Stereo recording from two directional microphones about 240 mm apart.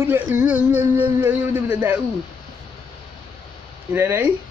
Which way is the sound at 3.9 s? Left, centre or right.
Centre.